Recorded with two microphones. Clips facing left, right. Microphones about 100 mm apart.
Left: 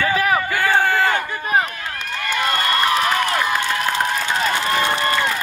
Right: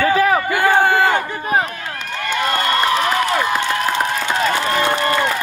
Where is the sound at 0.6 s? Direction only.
15° right (ahead or behind).